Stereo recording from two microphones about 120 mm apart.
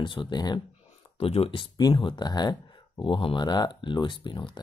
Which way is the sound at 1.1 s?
55° left (ahead or behind).